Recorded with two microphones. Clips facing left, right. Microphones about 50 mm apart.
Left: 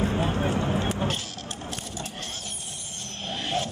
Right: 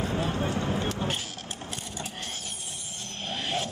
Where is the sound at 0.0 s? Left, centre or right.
Left.